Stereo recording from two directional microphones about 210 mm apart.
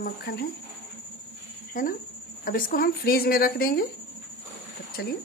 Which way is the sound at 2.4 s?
40° left (ahead or behind).